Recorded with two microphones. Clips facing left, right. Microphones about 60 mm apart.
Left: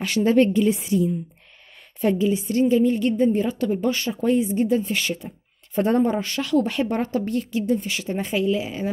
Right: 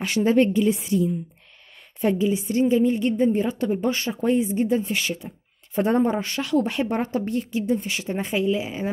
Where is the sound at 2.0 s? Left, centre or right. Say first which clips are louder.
Left 1 dB; centre.